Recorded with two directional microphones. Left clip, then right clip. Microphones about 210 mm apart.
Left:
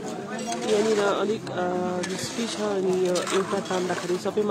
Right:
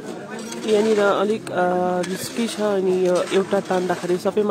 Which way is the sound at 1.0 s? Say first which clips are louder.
Right 5 dB; 30° right (ahead or behind).